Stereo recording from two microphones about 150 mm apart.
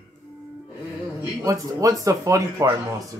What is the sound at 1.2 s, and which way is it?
Speech, 15° right (ahead or behind).